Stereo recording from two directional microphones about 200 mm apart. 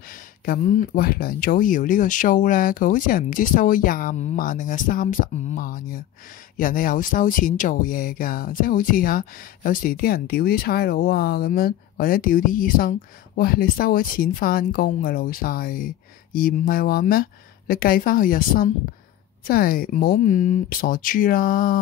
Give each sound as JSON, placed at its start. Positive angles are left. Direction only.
{"t": 0.5, "sound": "speech", "side_deg": 50}